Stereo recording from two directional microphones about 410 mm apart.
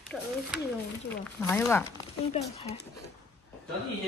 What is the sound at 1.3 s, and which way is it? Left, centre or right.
A woman's voice, centre.